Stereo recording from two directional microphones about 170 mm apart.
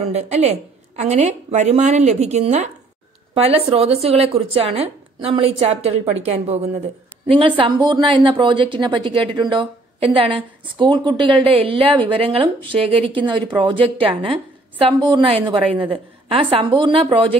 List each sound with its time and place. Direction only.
0.0 s a woman's voice: 40° right (ahead or behind)